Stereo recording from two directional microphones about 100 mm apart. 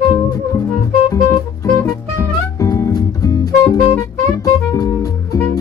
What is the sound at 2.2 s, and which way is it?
Music, 30° left (ahead or behind).